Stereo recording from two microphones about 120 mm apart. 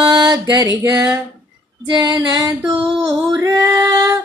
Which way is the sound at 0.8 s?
25° right (ahead or behind).